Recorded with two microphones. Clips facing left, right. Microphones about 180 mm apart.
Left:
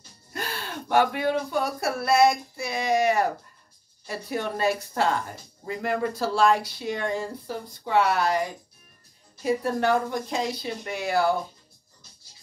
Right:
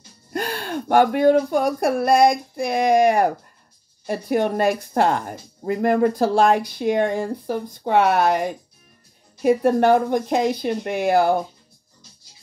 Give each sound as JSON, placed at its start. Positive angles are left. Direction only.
{"t": 0.3, "sound": "gasp", "side_deg": -50}
{"t": 1.7, "sound": "speech", "side_deg": -50}